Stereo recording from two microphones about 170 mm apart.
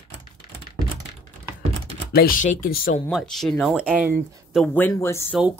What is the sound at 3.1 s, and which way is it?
Speech, centre (ahead or behind).